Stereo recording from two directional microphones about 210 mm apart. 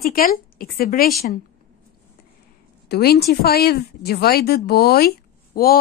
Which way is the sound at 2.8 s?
50° left (ahead or behind).